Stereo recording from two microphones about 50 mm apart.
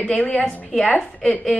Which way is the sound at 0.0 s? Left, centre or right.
Left.